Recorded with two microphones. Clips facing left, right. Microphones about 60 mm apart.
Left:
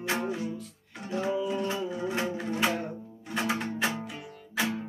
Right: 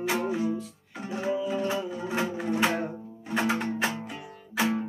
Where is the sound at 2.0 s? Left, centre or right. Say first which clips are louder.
Left 1 dB; right.